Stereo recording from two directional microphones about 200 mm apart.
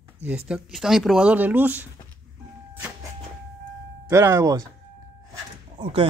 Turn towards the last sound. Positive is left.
turn(degrees=-25)  # may be behind; listen again after turning